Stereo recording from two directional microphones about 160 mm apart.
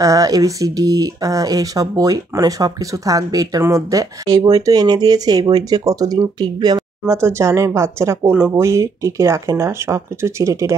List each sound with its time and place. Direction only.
0.0 s speech: 20° right (ahead or behind)